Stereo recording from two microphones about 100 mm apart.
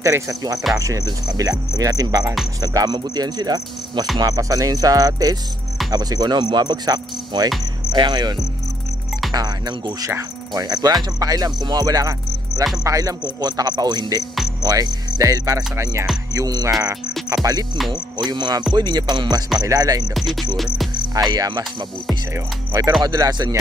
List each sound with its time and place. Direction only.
0.0 s speech: 35° right (ahead or behind)
20.2 s music: centre (ahead or behind)
20.9 s cricket: 45° right (ahead or behind)
22.3 s music: 30° right (ahead or behind)
23.0 s speech: 40° right (ahead or behind)